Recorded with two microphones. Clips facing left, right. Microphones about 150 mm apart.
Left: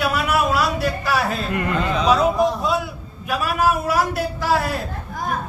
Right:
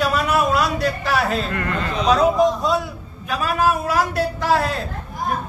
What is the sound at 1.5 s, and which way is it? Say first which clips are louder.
Speech: left 3 dB; 15° left (ahead or behind).